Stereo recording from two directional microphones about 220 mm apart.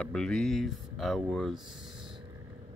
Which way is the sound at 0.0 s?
5° left (ahead or behind).